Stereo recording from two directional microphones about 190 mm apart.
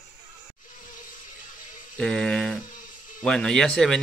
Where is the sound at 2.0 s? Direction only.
5° left (ahead or behind).